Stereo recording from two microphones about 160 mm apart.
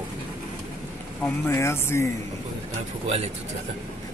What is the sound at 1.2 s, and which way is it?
Speech, 15° left (ahead or behind).